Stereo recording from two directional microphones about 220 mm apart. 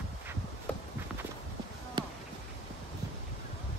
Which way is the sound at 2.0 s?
20° right (ahead or behind).